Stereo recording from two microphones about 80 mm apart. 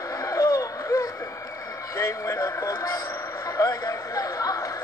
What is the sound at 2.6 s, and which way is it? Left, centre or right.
Radio, left.